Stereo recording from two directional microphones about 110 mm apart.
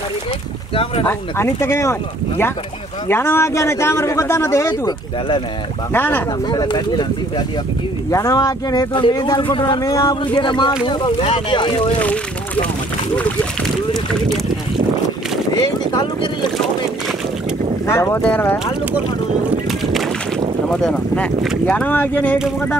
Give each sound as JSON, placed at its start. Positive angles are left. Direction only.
{"t": 1.0, "sound": "a man's voice", "side_deg": 20}
{"t": 5.9, "sound": "a man's voice", "side_deg": 20}
{"t": 6.4, "sound": "speech", "side_deg": 40}
{"t": 15.9, "sound": "speech", "side_deg": 40}
{"t": 17.8, "sound": "a man's voice", "side_deg": 25}
{"t": 19.7, "sound": "boat", "side_deg": 0}
{"t": 20.7, "sound": "speech", "side_deg": 10}